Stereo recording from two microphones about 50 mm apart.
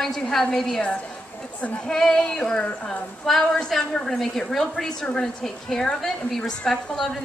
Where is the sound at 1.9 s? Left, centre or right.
Centre.